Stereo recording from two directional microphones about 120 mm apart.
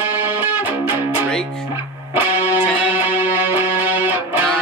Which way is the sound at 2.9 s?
15° right (ahead or behind).